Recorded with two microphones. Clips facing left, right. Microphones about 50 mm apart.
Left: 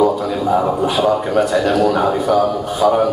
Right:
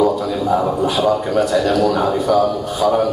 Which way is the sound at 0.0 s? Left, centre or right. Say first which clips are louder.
Left 1 dB; centre.